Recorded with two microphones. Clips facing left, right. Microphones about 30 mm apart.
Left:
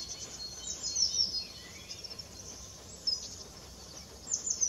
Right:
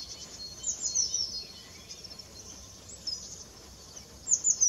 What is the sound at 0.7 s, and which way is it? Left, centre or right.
Chirp, left.